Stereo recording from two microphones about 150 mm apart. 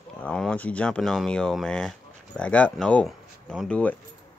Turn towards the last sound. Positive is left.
turn(degrees=10)  # may be behind; listen again after turning